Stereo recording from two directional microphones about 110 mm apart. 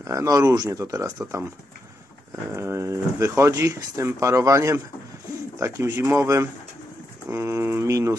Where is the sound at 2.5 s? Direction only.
25° right (ahead or behind).